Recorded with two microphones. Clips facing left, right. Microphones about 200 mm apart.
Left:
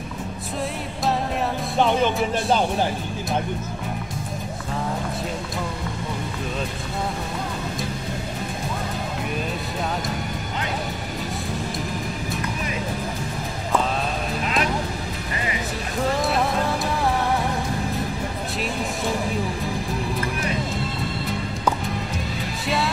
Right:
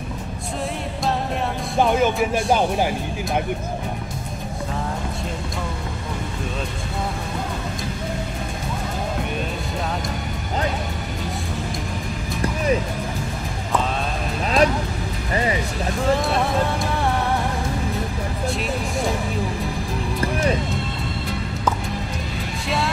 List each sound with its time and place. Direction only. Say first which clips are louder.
1.8 s music: right 2 dB; 5° right (ahead or behind)
14.4 s vehicle: right 8 dB; 35° right (ahead or behind)